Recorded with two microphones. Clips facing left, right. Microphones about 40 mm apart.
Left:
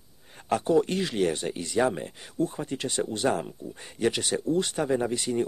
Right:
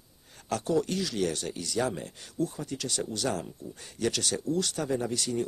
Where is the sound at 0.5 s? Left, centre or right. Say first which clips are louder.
Left 5 dB; left.